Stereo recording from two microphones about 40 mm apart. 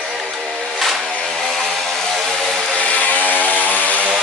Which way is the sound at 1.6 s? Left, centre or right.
Centre.